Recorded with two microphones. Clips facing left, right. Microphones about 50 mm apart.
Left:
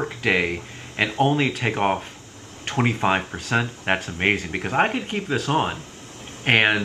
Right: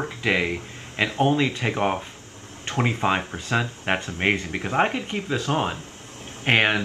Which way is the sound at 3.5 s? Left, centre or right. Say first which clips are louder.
Left 2 dB; left.